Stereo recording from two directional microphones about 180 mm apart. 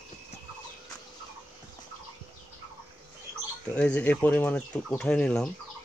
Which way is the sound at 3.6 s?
5° left (ahead or behind).